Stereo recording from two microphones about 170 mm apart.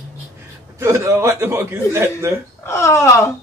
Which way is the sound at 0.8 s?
15° right (ahead or behind).